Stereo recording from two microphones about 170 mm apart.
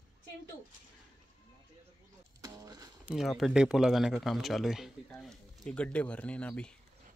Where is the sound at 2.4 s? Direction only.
20° right (ahead or behind).